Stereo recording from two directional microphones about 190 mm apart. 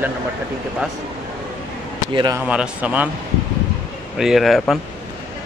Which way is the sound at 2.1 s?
20° right (ahead or behind).